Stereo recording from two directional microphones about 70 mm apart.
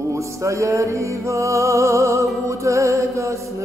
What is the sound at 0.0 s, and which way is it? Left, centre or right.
Music, right.